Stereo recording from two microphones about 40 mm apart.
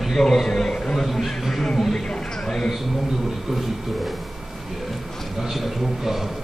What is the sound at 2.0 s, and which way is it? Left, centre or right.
Speech, left.